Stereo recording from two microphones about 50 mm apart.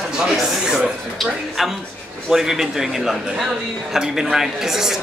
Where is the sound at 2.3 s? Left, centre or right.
Centre.